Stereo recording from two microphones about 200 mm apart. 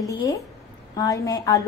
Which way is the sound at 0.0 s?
15° left (ahead or behind).